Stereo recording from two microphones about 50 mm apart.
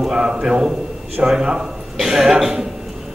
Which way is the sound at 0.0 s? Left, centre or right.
Centre.